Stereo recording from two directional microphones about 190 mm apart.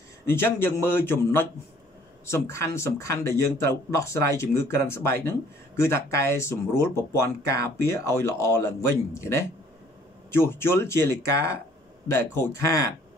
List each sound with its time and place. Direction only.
0.3 s speech: 10° left (ahead or behind)
10.3 s speech: 10° left (ahead or behind)